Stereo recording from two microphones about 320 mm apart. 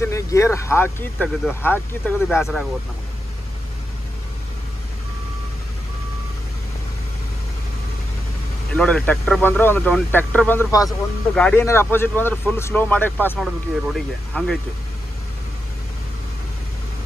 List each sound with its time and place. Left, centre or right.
0.0 s speech: centre
8.7 s speech: centre